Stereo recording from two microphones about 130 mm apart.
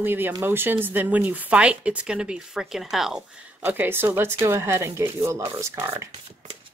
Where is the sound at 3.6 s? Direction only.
15° right (ahead or behind).